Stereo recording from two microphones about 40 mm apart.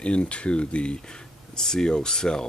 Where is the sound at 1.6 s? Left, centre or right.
Centre.